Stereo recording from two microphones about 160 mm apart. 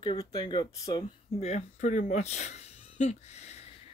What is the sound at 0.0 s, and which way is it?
Speech, 30° left (ahead or behind).